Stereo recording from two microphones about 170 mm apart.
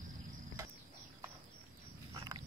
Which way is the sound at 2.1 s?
25° right (ahead or behind).